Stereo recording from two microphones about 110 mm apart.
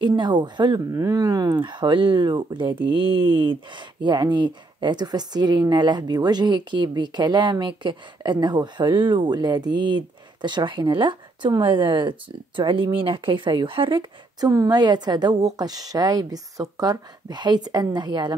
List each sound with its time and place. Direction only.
0.0 s speech: 40° right (ahead or behind)
0.9 s speech: 30° right (ahead or behind); by 14.5 s 45° right (ahead or behind)
14.5 s speech: 35° right (ahead or behind)